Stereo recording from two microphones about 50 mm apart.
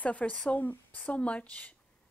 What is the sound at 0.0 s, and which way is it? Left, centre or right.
A woman's voice, left.